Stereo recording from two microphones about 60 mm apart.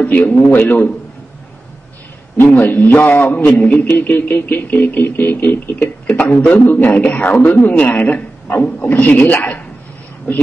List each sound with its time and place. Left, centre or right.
0.0 s a man's voice: left
2.3 s a sound: left
3.6 s a man's voice: left
3.9 s a sound: left
6.5 s a man's voice: left
7.0 s a man's voice: centre